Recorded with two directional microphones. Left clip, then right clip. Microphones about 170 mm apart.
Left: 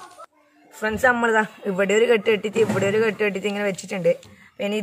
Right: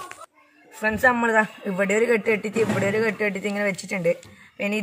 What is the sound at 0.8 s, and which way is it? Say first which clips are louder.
A man's voice: left 1 dB; 15° left (ahead or behind).